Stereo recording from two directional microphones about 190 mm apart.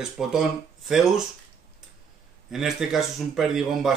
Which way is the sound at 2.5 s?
Centre (ahead or behind).